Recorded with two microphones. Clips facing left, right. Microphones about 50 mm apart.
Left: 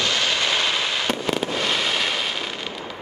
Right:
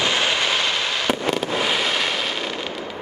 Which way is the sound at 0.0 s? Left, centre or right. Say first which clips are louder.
Right 2 dB; centre.